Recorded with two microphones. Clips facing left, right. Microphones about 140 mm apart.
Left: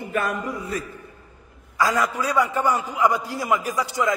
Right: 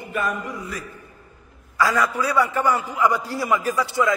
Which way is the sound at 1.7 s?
20° left (ahead or behind).